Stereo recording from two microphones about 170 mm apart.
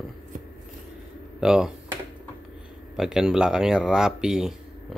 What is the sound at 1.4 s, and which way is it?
Speech, 5° right (ahead or behind).